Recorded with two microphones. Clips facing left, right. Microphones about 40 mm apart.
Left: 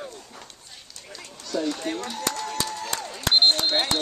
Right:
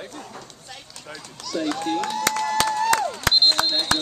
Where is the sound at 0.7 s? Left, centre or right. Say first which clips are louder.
Right 5 dB; right.